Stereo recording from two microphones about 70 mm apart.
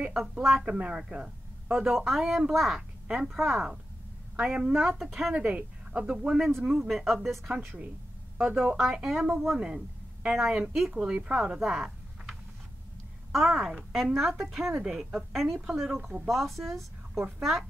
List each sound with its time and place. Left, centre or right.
0.4 s speech: centre
0.7 s speech: centre
1.1 s a sound: centre
1.9 s speech: centre
3.3 s speech: centre
4.4 s a woman's voice: centre
5.3 s a woman's voice: right; by 7.5 s centre
8.5 s a woman's voice: centre
8.7 s a woman's voice: centre
15.3 s speech: centre